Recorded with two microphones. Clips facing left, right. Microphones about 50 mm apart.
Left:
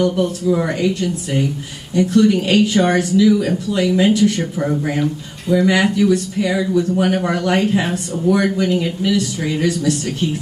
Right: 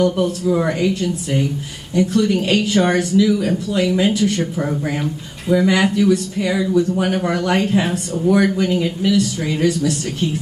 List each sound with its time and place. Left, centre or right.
0.2 s speech: centre